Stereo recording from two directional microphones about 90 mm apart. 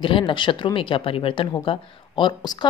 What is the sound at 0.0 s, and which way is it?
Speech, 75° left (ahead or behind).